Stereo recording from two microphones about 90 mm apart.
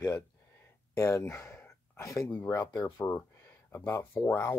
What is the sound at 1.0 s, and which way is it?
Speech, 30° left (ahead or behind).